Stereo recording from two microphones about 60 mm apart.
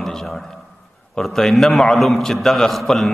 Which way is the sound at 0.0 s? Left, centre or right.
Centre.